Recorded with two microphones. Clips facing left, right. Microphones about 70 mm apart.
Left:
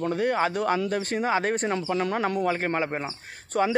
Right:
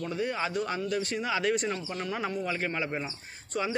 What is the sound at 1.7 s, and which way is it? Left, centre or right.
Speech, left.